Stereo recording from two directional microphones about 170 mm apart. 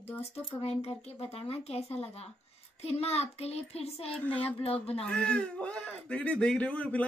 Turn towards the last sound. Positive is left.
turn(degrees=5)  # may be behind; listen again after turning